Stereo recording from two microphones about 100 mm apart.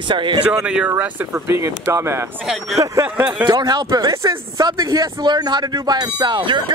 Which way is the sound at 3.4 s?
45° right (ahead or behind).